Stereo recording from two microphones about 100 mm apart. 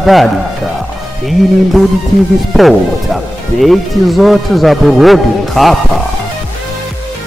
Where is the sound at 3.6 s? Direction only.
Centre (ahead or behind).